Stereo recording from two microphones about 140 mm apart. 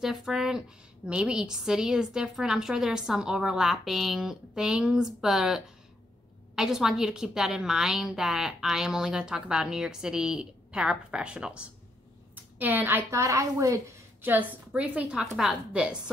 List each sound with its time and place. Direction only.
0.0 s a woman's voice: 5° right (ahead or behind); by 13.7 s 20° right (ahead or behind)
14.2 s a woman's voice: 10° right (ahead or behind)